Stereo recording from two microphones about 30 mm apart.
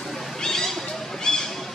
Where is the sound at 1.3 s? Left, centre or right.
Left.